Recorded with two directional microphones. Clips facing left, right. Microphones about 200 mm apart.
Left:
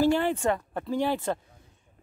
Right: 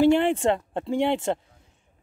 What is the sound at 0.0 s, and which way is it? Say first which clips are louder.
Speech: right 4 dB; 25° right (ahead or behind).